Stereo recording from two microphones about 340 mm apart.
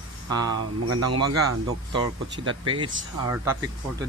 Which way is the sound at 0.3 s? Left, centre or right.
Centre.